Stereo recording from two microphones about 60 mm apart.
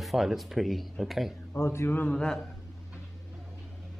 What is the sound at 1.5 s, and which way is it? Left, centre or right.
Speech, left.